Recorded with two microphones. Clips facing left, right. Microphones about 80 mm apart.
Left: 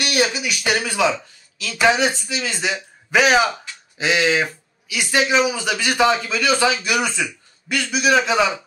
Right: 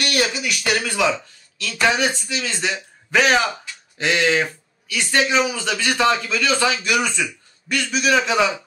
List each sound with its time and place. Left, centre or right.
0.0 s a man's voice: centre